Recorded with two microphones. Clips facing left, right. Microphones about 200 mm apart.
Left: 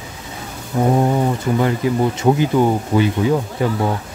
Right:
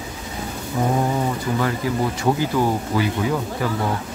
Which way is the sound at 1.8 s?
20° left (ahead or behind).